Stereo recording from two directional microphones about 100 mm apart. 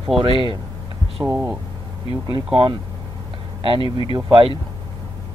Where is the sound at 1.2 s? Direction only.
35° right (ahead or behind).